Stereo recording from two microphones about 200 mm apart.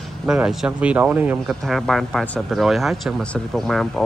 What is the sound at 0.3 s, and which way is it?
Speech, centre (ahead or behind).